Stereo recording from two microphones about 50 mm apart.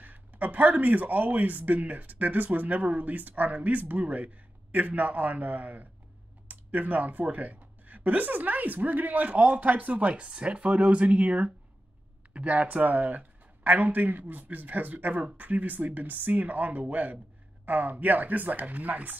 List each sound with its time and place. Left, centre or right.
0.0 s speech: right